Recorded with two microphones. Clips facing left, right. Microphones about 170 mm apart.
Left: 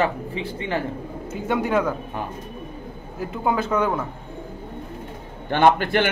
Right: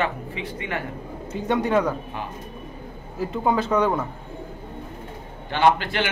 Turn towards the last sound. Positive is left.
turn(degrees=50)  # may be behind; listen again after turning